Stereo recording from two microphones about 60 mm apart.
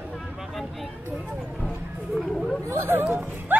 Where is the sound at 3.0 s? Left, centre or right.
Right.